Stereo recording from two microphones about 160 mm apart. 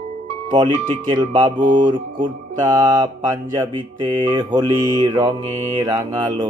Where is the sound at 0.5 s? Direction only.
30° right (ahead or behind).